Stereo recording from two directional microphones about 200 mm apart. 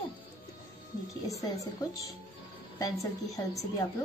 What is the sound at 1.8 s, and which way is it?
A woman's voice, 20° left (ahead or behind).